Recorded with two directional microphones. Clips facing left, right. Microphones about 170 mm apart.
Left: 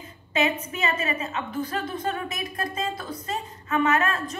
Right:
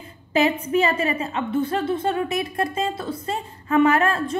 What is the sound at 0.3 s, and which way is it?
A woman's voice, 30° right (ahead or behind).